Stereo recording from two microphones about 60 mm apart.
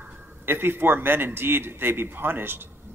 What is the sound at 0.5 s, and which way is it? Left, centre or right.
Speech, right.